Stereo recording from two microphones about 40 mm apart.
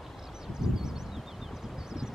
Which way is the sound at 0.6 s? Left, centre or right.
Centre.